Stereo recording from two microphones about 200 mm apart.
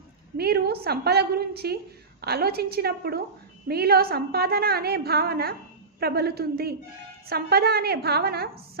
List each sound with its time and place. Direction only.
0.4 s a woman's voice: 50° right (ahead or behind)